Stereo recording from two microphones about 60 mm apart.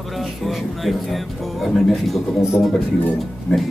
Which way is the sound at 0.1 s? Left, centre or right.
Centre.